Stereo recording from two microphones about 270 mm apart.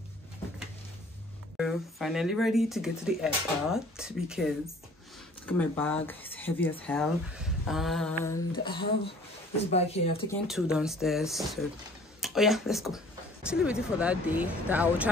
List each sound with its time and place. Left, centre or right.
1.6 s speech: centre; by 10.2 s left
10.4 s speech: centre